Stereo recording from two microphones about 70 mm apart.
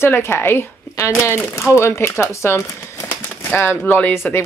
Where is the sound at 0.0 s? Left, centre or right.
Left.